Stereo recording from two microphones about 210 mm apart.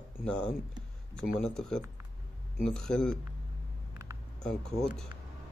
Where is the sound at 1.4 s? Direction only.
5° left (ahead or behind).